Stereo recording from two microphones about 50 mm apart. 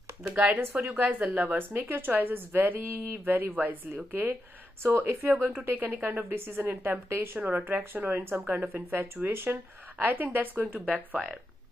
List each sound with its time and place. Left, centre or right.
0.3 s speech: right
1.7 s a woman's voice: right
4.1 s a woman's voice: right